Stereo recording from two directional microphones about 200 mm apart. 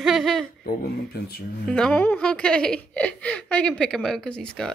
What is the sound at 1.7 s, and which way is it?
Speech, 5° left (ahead or behind).